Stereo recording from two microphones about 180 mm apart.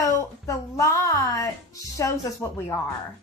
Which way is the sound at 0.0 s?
15° left (ahead or behind).